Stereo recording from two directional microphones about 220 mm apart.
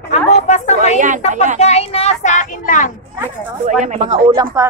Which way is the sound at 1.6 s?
30° left (ahead or behind).